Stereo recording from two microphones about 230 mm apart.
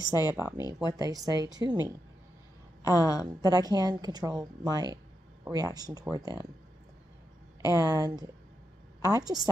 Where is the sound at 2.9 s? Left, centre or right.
Centre.